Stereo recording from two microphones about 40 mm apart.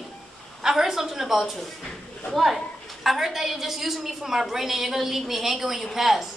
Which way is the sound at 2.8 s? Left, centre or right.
Centre.